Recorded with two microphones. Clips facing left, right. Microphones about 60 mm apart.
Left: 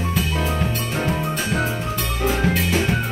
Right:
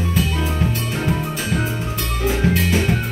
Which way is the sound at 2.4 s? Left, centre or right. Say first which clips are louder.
Right 1 dB; centre.